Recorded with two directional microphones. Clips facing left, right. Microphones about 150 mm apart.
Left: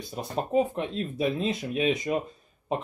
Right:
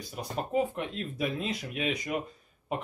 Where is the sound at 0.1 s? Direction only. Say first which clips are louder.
Left 4 dB; 25° left (ahead or behind).